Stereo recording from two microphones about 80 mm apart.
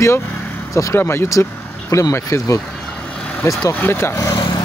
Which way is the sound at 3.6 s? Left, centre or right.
Left.